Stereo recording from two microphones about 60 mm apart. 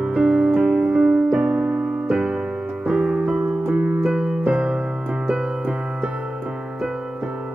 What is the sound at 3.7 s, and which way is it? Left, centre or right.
Keyboard, centre.